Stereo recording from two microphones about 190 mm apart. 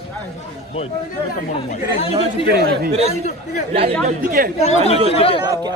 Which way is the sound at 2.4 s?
60° right (ahead or behind).